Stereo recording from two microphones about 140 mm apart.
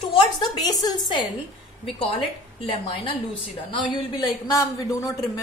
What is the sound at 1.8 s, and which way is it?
Speech, 40° left (ahead or behind).